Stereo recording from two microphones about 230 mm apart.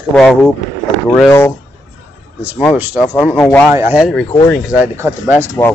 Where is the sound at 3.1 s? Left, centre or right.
Centre.